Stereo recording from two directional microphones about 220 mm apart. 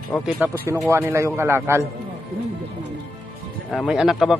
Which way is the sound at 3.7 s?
Centre (ahead or behind).